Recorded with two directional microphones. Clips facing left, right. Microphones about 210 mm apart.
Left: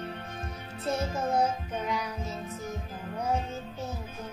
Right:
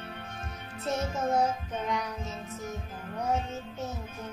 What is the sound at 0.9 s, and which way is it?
Music, centre (ahead or behind).